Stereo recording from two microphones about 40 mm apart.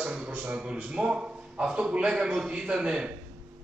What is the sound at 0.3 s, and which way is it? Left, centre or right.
A man's voice, right.